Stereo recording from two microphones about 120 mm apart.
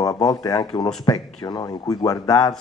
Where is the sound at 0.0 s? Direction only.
30° left (ahead or behind).